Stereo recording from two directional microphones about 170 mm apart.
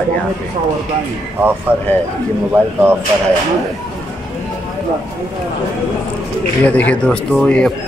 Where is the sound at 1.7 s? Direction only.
10° right (ahead or behind).